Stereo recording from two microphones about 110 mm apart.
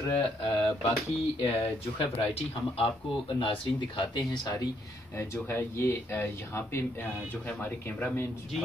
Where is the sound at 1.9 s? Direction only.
60° left (ahead or behind); by 4.7 s 40° left (ahead or behind).